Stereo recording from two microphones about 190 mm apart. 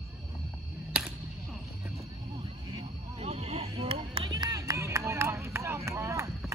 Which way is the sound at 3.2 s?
35° right (ahead or behind).